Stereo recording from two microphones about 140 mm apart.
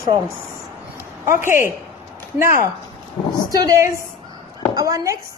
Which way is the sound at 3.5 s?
25° right (ahead or behind).